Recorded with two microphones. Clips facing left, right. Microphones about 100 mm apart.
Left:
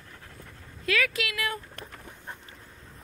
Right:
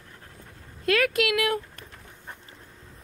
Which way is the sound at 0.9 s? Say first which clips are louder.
Right 6 dB; 50° right (ahead or behind).